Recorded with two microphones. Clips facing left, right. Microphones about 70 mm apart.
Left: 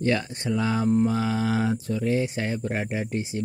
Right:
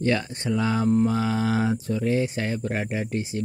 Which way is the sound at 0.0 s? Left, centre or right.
Centre.